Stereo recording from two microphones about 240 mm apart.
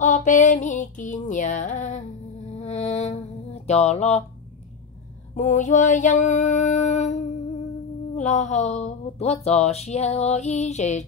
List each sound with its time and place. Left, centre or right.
0.0 s music: left
5.3 s a sound: left
8.2 s speech: left